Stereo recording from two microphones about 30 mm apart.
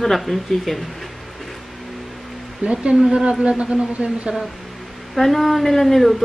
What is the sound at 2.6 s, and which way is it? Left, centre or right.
Speech, right.